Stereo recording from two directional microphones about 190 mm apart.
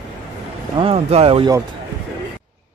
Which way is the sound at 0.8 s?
30° right (ahead or behind).